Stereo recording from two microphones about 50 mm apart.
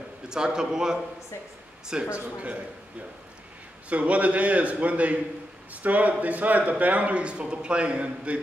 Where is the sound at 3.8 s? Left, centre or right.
Right.